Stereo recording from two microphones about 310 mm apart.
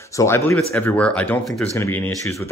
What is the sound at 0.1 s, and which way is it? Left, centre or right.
Speech, centre.